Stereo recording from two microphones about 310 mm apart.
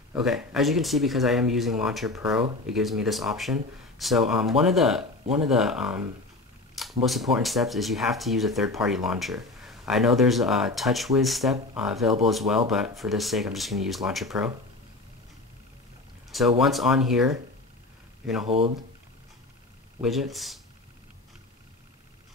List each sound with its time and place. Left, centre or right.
0.1 s speech: centre
16.3 s speech: centre
20.0 s speech: centre